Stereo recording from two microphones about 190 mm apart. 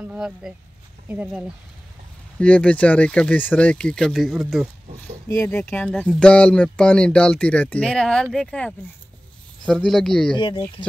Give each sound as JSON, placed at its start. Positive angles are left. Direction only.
{"t": 0.0, "sound": "speech", "side_deg": -5}
{"t": 2.3, "sound": "speech", "side_deg": 5}
{"t": 5.3, "sound": "speech", "side_deg": 15}
{"t": 10.3, "sound": "speech", "side_deg": 25}